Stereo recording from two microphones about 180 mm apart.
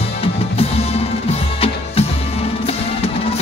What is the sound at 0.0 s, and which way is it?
Music, 35° left (ahead or behind).